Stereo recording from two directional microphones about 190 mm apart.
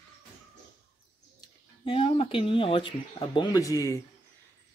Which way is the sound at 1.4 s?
30° left (ahead or behind).